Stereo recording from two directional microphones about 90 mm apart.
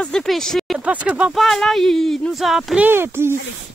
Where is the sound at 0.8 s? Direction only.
15° right (ahead or behind).